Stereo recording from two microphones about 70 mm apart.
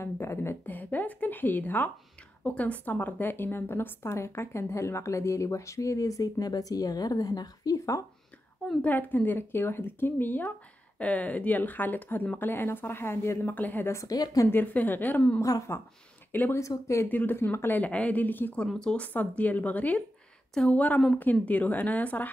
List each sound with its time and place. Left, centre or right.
0.0 s a woman's voice: left
0.7 s a woman's voice: left
8.8 s speech: left
13.4 s speech: left
13.9 s a woman's voice: left
14.5 s a woman's voice: left
16.5 s a woman's voice: left
17.1 s speech: left
18.7 s speech: centre
18.9 s speech: left
20.5 s speech: centre
21.1 s speech: left